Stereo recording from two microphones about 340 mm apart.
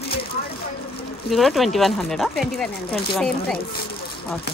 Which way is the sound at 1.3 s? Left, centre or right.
Centre.